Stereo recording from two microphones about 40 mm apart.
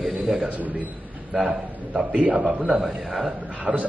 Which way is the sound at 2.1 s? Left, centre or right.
Right.